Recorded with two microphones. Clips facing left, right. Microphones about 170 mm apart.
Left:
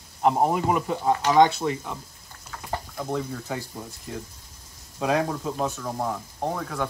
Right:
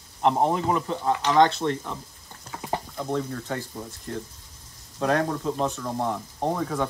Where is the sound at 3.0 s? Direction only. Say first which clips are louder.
Even; 5° left (ahead or behind).